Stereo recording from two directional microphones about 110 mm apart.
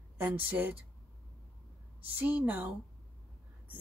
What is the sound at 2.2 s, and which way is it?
Speech, 15° right (ahead or behind).